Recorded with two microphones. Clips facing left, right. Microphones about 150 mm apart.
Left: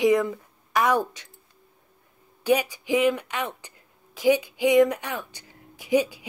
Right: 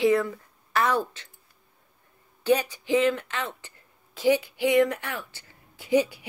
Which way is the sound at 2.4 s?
10° left (ahead or behind).